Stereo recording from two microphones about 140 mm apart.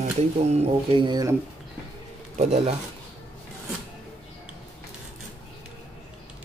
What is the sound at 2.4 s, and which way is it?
Speech, 50° right (ahead or behind).